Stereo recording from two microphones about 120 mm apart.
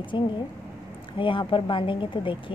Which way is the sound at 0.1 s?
40° left (ahead or behind).